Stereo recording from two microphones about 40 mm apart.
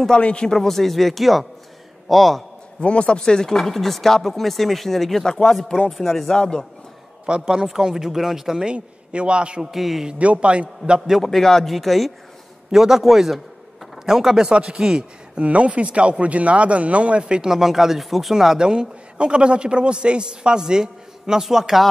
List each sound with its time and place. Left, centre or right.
0.2 s speech: left
0.5 s speech: centre
2.8 s speech: left
7.2 s a woman's voice: centre
8.6 s a woman's voice: right
9.6 s speech: centre
10.1 s a man's voice: right
11.2 s speech: centre
12.7 s speech: centre
14.5 s a woman's voice: right
17.6 s speech: centre
18.7 s a woman's voice: right